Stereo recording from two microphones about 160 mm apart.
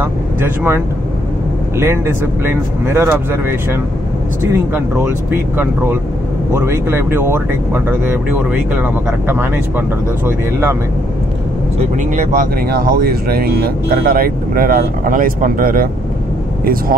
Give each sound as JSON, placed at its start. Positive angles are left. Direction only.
{"t": 0.0, "sound": "speech", "side_deg": -15}
{"t": 2.4, "sound": "speech", "side_deg": -15}
{"t": 12.2, "sound": "speech", "side_deg": -55}